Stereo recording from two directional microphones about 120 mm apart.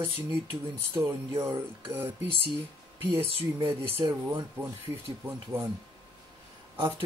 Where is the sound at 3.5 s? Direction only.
35° right (ahead or behind).